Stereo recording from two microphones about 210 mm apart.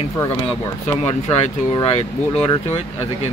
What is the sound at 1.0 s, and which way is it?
Speech, 30° left (ahead or behind).